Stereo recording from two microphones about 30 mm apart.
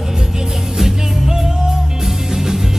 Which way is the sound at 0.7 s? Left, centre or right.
Centre.